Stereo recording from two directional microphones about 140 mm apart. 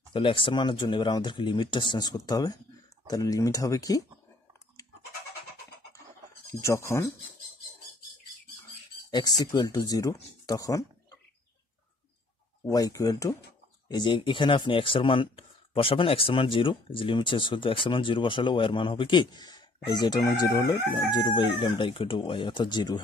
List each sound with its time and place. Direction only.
0.1 s speech: 40° left (ahead or behind)
6.6 s speech: 20° left (ahead or behind)
9.1 s speech: 30° left (ahead or behind)
12.6 s speech: 25° left (ahead or behind)